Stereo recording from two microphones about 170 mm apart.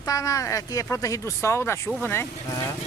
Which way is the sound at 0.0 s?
20° left (ahead or behind).